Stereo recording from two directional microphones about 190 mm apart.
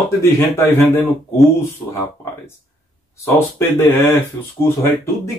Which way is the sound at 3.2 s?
10° left (ahead or behind).